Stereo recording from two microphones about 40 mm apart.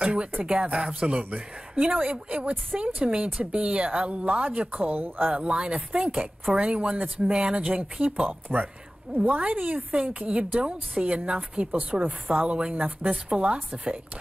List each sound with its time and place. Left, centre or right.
0.0 s a sound: right
0.5 s a woman's voice: right
5.3 s a woman's voice: right
8.3 s speech: right
9.4 s a woman's voice: right
12.0 s speech: right
12.4 s a woman's voice: right
12.7 s a woman's voice: right
13.3 s a woman's voice: right